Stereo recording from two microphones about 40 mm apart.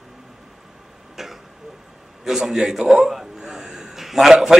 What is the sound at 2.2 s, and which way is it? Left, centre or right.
A man's voice, centre.